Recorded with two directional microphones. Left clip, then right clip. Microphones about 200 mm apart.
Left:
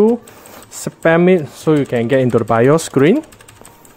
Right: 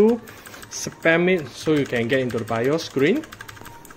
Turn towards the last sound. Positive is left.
turn(degrees=40)  # may be behind; listen again after turning